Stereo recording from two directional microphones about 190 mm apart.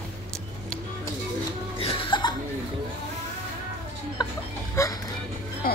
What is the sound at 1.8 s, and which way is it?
Laughter, 30° left (ahead or behind).